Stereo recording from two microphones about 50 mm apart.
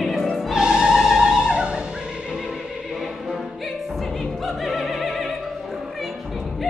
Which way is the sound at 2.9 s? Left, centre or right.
Centre.